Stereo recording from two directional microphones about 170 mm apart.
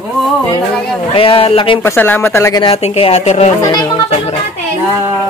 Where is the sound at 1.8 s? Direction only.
15° left (ahead or behind).